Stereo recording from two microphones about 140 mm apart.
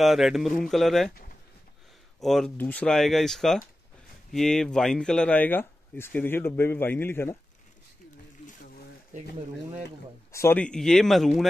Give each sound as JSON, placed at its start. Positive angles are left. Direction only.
{"t": 0.0, "sound": "speech", "side_deg": 0}
{"t": 2.2, "sound": "speech", "side_deg": 0}
{"t": 9.1, "sound": "speech", "side_deg": -65}
{"t": 10.3, "sound": "speech", "side_deg": 20}
{"t": 10.6, "sound": "speech", "side_deg": 5}